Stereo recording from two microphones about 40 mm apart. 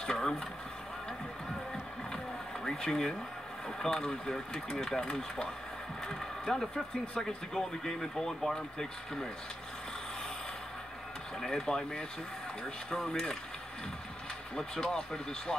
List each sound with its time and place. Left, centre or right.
0.0 s vehicle: centre
2.6 s speech: centre
11.4 s speech: centre
14.5 s speech: centre
14.9 s speech: centre